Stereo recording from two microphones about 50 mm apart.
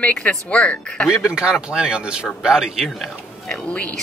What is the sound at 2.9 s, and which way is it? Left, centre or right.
Speech, centre.